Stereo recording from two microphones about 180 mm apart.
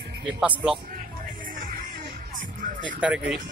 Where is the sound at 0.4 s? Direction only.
5° right (ahead or behind).